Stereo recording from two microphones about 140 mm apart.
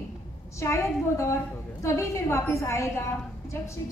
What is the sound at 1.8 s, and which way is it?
A woman's voice, 20° left (ahead or behind).